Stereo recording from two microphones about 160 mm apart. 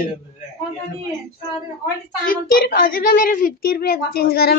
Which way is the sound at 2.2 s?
65° left (ahead or behind).